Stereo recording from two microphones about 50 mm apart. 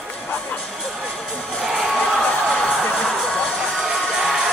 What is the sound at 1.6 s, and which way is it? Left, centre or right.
Music, centre.